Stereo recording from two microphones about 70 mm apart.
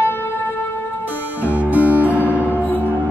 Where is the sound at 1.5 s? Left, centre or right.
Right.